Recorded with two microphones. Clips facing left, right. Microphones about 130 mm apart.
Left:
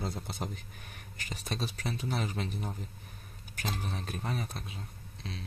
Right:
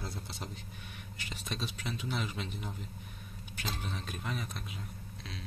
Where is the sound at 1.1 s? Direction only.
40° left (ahead or behind).